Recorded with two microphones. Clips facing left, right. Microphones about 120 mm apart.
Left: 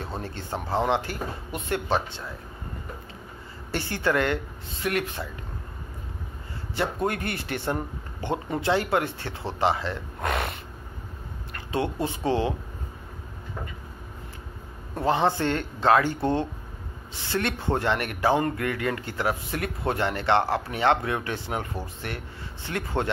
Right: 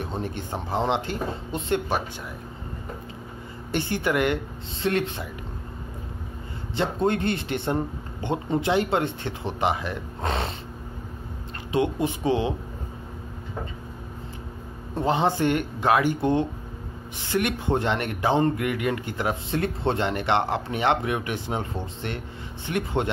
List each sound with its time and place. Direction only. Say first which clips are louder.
0.2 s speech: right 2 dB; 15° right (ahead or behind)
1.9 s speech: left 1 dB; 15° right (ahead or behind)
3.7 s speech: right 1 dB; 20° right (ahead or behind)
6.7 s speech: right 3 dB; 25° right (ahead or behind)
11.7 s speech: right 3 dB; 15° right (ahead or behind)
15.0 s speech: right 1 dB; 20° right (ahead or behind)